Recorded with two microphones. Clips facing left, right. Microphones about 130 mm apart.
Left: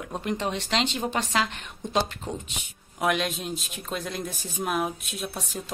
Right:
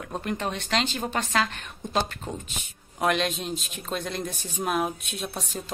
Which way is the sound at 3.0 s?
5° left (ahead or behind).